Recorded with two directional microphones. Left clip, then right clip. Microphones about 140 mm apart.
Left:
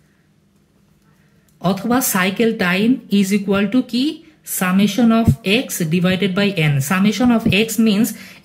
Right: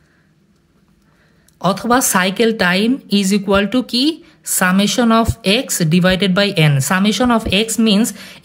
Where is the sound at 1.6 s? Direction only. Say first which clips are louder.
Right 4 dB; 75° right (ahead or behind).